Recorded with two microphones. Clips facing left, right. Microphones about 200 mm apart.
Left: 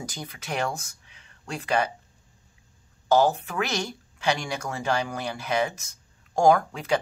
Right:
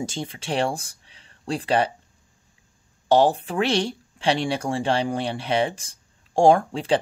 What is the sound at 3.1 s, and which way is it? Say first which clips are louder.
Speech: right 3 dB; 30° right (ahead or behind).